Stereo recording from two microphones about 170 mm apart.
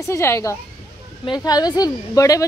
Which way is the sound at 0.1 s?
15° left (ahead or behind).